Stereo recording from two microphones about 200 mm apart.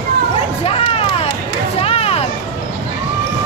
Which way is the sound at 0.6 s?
30° left (ahead or behind).